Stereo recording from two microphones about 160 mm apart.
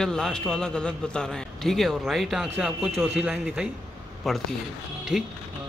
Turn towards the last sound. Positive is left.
turn(degrees=-5)  # may be behind; listen again after turning